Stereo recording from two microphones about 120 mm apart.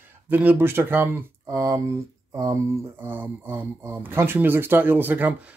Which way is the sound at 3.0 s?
15° right (ahead or behind).